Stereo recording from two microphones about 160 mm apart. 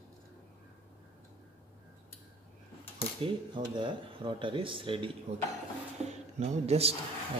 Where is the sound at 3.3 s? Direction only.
30° right (ahead or behind).